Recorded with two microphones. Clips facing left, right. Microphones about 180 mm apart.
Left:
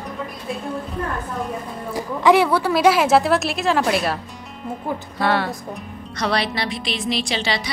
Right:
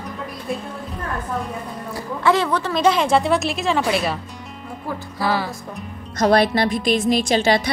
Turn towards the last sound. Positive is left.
turn(degrees=-50)  # may be behind; listen again after turning